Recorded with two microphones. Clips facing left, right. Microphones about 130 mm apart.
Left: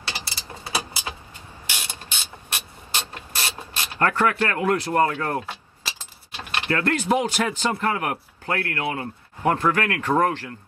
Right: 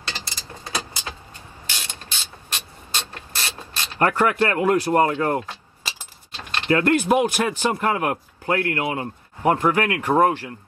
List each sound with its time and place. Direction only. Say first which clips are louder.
0.0 s a sound: even; 10° left (ahead or behind)
2.5 s mechanisms: even; 15° left (ahead or behind)
4.0 s a man's voice: right 2 dB; 15° right (ahead or behind)
4.5 s speech: right 4 dB; 25° right (ahead or behind)
6.3 s keys jangling: left 1 dB; 10° left (ahead or behind)
6.7 s a man's voice: right 4 dB; 15° right (ahead or behind)